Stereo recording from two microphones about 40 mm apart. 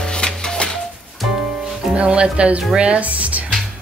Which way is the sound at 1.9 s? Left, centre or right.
Right.